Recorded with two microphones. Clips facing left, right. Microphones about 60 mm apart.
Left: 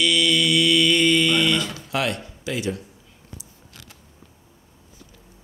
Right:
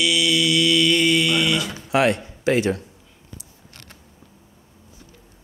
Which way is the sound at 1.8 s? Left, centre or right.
Right.